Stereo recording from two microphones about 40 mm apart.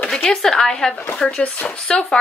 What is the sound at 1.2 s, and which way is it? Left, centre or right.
Speech, left.